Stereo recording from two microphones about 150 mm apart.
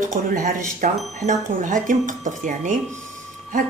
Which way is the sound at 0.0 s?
60° right (ahead or behind).